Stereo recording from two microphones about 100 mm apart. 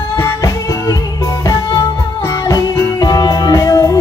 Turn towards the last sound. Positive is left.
turn(degrees=35)  # may be behind; listen again after turning